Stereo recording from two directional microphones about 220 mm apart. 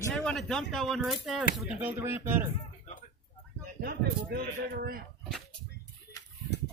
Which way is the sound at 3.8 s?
45° right (ahead or behind).